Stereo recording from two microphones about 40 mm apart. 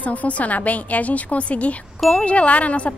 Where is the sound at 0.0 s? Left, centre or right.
Left.